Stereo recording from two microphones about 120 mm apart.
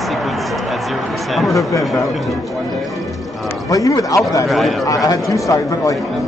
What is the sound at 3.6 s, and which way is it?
Speech, 30° left (ahead or behind).